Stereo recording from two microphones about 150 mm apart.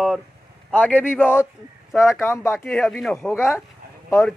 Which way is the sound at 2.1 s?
15° left (ahead or behind).